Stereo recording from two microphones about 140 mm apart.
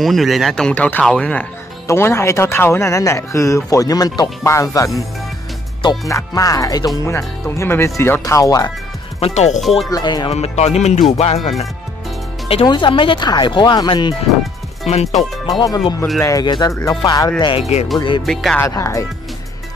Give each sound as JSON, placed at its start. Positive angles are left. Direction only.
{"t": 0.0, "sound": "speech", "side_deg": 0}
{"t": 1.9, "sound": "speech", "side_deg": 20}
{"t": 5.8, "sound": "speech", "side_deg": 35}
{"t": 9.2, "sound": "speech", "side_deg": 55}
{"t": 9.6, "sound": "speech", "side_deg": 0}
{"t": 9.8, "sound": "speech", "side_deg": 25}
{"t": 10.3, "sound": "speech", "side_deg": 50}
{"t": 12.6, "sound": "speech", "side_deg": 35}
{"t": 14.9, "sound": "speech", "side_deg": 50}
{"t": 15.4, "sound": "speech", "side_deg": 25}
{"t": 17.4, "sound": "speech", "side_deg": 35}
{"t": 18.2, "sound": "speech", "side_deg": 5}
{"t": 18.6, "sound": "speech", "side_deg": 20}